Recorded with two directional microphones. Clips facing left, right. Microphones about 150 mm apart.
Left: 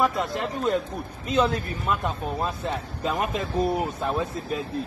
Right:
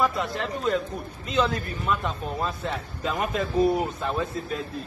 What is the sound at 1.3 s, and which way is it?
Speech, centre (ahead or behind).